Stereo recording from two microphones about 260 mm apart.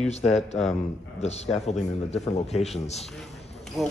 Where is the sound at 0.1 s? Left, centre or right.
Left.